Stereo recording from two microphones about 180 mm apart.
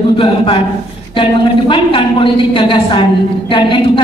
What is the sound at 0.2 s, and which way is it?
A man's voice, 30° left (ahead or behind).